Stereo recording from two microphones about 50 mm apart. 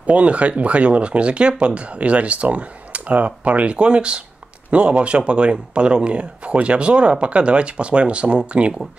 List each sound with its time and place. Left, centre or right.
0.0 s speech: right